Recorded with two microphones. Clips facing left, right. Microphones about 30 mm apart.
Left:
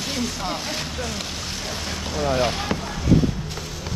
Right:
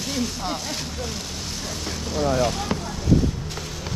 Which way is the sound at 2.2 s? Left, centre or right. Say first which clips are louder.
Even; left.